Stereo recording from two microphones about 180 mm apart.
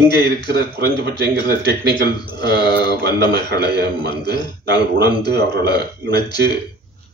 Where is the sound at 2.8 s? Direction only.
65° right (ahead or behind).